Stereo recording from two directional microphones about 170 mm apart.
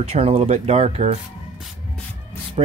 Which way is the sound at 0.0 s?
35° right (ahead or behind).